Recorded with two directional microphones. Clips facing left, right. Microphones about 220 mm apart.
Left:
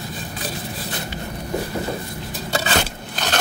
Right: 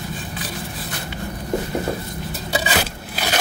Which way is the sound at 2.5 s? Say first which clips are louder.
Even; 10° right (ahead or behind).